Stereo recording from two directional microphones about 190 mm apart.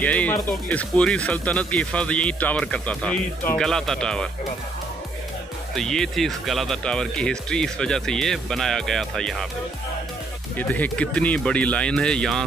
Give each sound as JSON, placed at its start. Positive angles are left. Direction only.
{"t": 0.0, "sound": "speech", "side_deg": 10}
{"t": 5.8, "sound": "speech", "side_deg": 5}
{"t": 10.6, "sound": "speech", "side_deg": 10}